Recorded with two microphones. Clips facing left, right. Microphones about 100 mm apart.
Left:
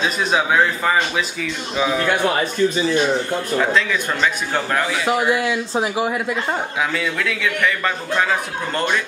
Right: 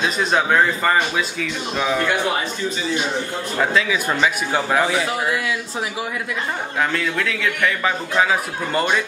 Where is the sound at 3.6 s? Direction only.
5° right (ahead or behind).